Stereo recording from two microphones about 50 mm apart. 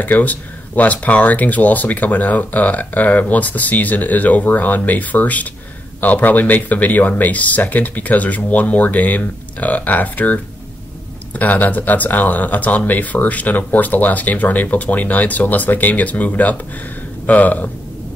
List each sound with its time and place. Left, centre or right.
0.0 s speech: left